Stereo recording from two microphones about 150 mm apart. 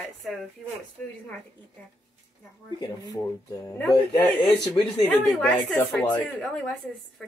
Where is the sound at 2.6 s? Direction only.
25° left (ahead or behind).